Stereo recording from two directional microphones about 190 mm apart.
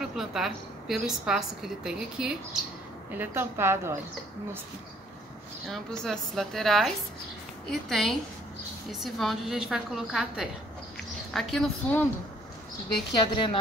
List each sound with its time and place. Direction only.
0.0 s a woman's voice: centre (ahead or behind)
5.7 s a woman's voice: centre (ahead or behind)
7.9 s a woman's voice: centre (ahead or behind)
13.2 s a woman's voice: 25° left (ahead or behind)